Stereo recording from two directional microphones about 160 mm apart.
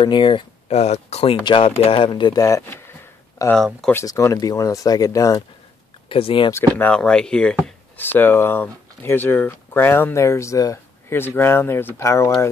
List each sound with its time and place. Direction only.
0.0 s speech: 30° left (ahead or behind)
3.5 s speech: 5° left (ahead or behind)
3.9 s speech: 20° left (ahead or behind)
6.0 s speech: 35° left (ahead or behind)
6.5 s speech: 10° left (ahead or behind)